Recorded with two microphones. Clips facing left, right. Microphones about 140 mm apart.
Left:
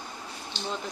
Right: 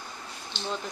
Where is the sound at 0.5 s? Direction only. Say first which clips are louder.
Even; 40° left (ahead or behind).